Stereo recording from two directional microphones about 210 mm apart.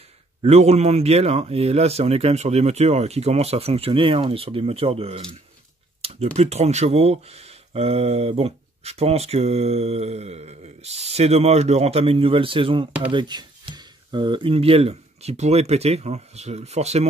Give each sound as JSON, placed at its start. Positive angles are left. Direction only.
{"t": 0.4, "sound": "speech", "side_deg": -30}
{"t": 6.3, "sound": "speech", "side_deg": -30}